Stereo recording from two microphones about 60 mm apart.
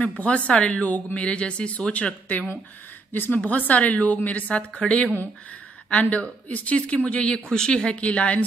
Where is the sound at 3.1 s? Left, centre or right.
Left.